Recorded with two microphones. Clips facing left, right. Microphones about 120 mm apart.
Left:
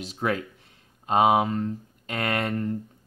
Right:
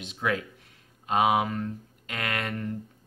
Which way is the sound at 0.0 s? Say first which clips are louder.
Left 2 dB; 35° left (ahead or behind).